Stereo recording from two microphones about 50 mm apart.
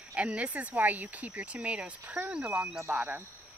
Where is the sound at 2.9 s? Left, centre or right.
Right.